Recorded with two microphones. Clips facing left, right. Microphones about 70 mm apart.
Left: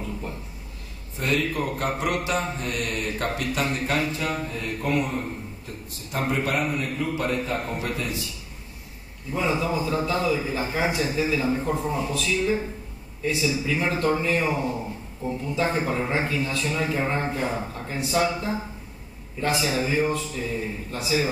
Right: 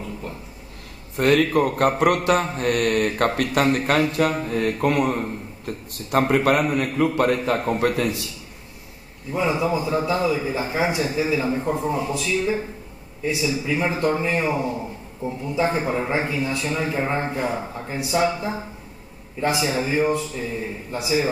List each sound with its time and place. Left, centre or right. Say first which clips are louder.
1.1 s mantra: right 8 dB; right
6.0 s a man's voice: right 8 dB; right
7.8 s a man's voice: right 8 dB; right
9.3 s a man's voice: right 3 dB; centre